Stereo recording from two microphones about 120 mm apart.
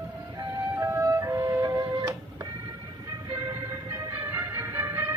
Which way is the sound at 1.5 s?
20° right (ahead or behind).